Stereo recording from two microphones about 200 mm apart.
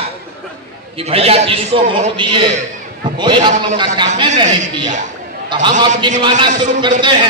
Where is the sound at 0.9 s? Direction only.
30° right (ahead or behind).